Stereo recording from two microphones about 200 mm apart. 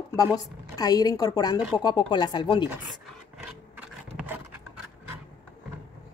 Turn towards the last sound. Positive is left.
turn(degrees=-10)  # may be behind; listen again after turning